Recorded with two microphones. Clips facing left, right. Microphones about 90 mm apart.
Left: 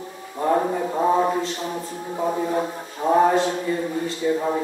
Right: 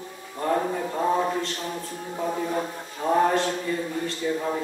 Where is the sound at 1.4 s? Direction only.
5° left (ahead or behind).